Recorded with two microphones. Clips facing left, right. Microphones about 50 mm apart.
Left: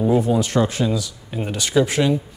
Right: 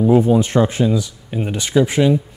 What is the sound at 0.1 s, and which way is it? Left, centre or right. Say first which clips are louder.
Speech: right 6 dB; right.